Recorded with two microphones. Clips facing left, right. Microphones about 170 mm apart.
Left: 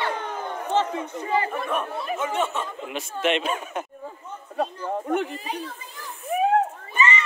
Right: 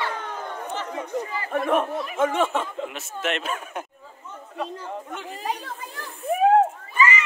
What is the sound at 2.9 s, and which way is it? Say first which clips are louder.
Speech: left 7 dB; centre (ahead or behind).